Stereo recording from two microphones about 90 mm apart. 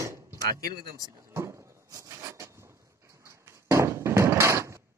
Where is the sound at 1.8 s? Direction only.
40° right (ahead or behind).